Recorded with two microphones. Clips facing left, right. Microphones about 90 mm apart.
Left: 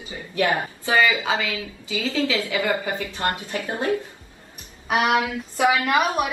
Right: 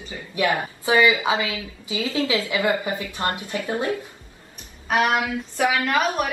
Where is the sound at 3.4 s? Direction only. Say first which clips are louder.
Right 2 dB; 25° left (ahead or behind).